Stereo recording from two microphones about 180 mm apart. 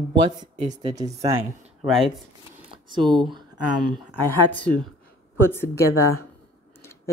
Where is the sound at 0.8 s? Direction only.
20° right (ahead or behind).